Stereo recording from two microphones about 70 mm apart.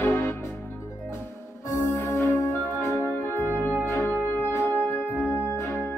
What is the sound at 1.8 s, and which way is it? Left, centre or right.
Music, left.